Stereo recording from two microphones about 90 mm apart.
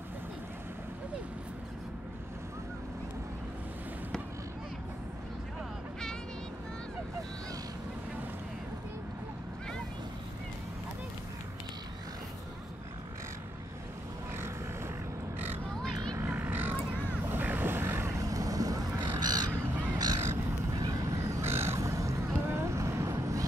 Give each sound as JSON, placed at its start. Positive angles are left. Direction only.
{"t": 15.3, "sound": "a sound", "side_deg": -20}
{"t": 19.1, "sound": "crow", "side_deg": -50}
{"t": 19.7, "sound": "crow", "side_deg": -25}
{"t": 20.7, "sound": "vehicle", "side_deg": -45}
{"t": 21.2, "sound": "crow", "side_deg": -30}